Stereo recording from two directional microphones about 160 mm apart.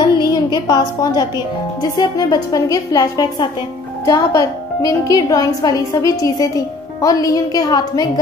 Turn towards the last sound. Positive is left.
turn(degrees=25)  # may be behind; listen again after turning